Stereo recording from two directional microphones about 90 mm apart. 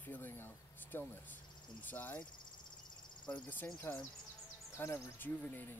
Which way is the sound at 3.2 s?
15° left (ahead or behind).